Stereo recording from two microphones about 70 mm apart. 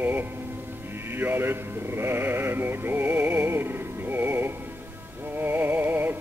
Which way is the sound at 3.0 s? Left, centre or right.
Centre.